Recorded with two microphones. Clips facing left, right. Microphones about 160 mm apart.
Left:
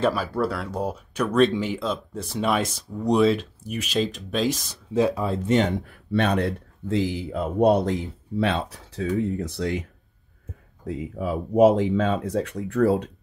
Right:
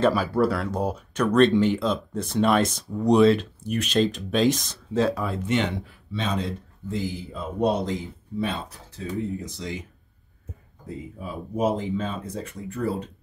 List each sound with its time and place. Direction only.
0.0 s speech: centre (ahead or behind)
5.2 s speech: 35° left (ahead or behind)
5.9 s speech: 65° left (ahead or behind)
10.9 s speech: 85° left